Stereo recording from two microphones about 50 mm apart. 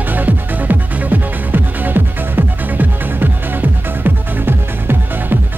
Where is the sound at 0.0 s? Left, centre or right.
Right.